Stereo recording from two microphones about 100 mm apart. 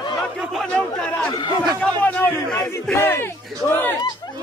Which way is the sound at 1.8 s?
20° left (ahead or behind).